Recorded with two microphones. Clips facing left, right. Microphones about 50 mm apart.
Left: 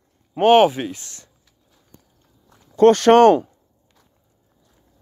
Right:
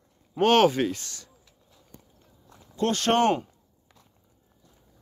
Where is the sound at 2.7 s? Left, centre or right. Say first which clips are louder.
Left 12 dB; left.